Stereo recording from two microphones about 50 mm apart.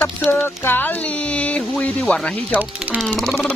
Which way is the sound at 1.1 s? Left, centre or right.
Left.